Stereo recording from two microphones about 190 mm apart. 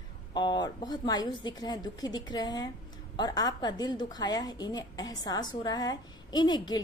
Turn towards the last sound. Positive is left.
turn(degrees=20)  # may be behind; listen again after turning